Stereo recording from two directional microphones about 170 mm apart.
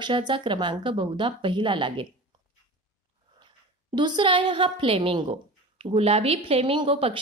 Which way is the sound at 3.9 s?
25° right (ahead or behind).